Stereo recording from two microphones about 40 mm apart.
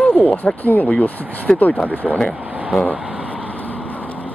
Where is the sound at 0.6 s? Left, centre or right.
Left.